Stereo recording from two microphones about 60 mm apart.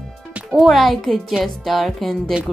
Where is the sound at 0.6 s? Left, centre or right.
Centre.